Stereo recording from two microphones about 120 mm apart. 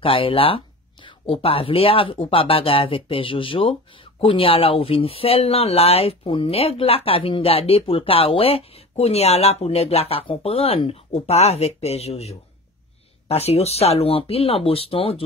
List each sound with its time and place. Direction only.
0.0 s speech: 50° left (ahead or behind)